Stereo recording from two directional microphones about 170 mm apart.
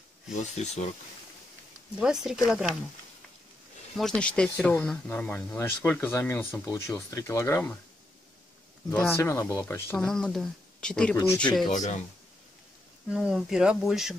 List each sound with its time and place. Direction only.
0.6 s speech: 40° left (ahead or behind)
2.0 s speech: 5° right (ahead or behind)
3.9 s speech: 5° left (ahead or behind)
8.9 s speech: 5° left (ahead or behind)
9.2 s speech: 15° left (ahead or behind)
11.7 s speech: 45° left (ahead or behind)
13.1 s speech: 5° right (ahead or behind)